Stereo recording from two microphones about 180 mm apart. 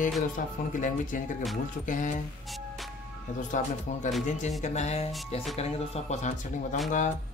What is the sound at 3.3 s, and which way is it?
Speech, 45° left (ahead or behind).